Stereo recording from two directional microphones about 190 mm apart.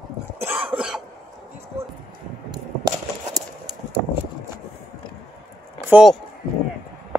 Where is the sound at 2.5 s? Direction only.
20° right (ahead or behind).